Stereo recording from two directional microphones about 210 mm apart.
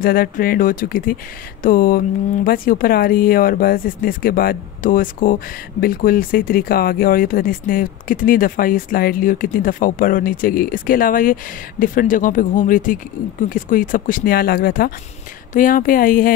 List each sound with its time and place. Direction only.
0.0 s speech: 45° left (ahead or behind)